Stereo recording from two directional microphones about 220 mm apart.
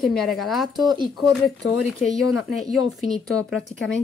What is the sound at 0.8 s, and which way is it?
Speech, 20° right (ahead or behind).